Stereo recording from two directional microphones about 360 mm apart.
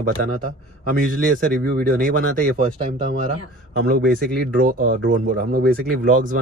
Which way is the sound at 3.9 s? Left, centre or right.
Right.